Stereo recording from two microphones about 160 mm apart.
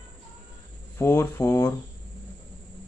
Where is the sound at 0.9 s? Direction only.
15° left (ahead or behind).